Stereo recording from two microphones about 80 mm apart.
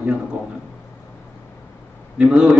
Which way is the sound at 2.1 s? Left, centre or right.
Centre.